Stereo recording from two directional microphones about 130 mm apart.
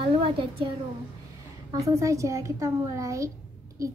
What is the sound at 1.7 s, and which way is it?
A child's voice, 25° right (ahead or behind).